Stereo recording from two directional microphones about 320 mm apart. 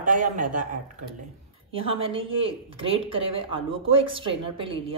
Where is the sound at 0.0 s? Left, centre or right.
Right.